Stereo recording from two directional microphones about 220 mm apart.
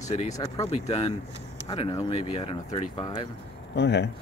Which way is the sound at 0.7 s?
25° left (ahead or behind).